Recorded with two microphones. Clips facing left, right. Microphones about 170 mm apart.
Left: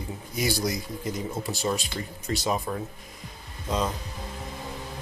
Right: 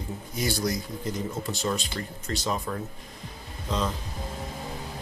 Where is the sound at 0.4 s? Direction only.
10° left (ahead or behind).